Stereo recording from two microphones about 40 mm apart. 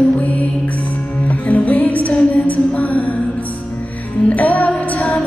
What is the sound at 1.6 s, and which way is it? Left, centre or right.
Music, left.